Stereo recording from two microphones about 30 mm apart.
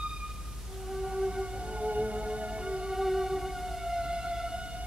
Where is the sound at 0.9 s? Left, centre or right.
Centre.